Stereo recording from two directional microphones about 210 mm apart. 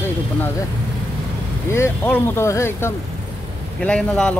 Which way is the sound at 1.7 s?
10° left (ahead or behind).